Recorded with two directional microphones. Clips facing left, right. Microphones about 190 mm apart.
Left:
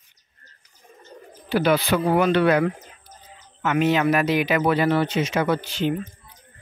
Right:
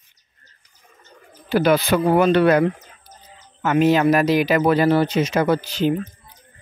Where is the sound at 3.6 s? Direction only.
40° right (ahead or behind).